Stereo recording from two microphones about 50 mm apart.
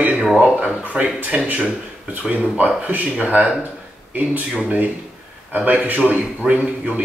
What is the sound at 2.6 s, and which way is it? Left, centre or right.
Speech, right.